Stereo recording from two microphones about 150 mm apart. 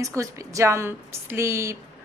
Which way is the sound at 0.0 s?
20° right (ahead or behind).